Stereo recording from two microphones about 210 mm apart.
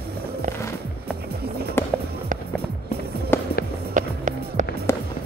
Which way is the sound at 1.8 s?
10° left (ahead or behind).